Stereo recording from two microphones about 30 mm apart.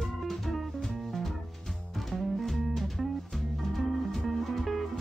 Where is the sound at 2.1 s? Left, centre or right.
Centre.